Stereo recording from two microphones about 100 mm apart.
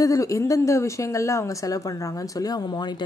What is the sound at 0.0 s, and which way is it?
A woman's voice, 35° left (ahead or behind).